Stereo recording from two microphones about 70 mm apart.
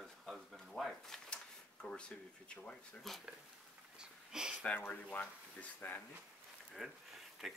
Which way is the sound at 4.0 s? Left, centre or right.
Centre.